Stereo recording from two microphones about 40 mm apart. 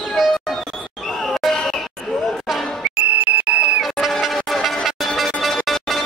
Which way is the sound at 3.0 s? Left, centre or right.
Right.